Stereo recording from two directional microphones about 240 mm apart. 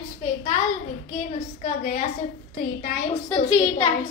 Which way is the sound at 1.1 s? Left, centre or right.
Left.